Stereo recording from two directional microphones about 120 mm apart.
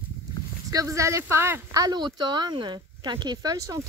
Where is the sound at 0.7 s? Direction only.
25° right (ahead or behind).